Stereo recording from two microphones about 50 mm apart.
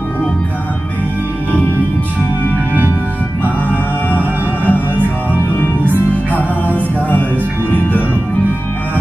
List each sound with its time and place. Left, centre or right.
4.1 s music: left
6.3 s music: left